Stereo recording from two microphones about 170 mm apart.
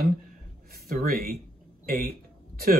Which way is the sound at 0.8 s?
60° right (ahead or behind).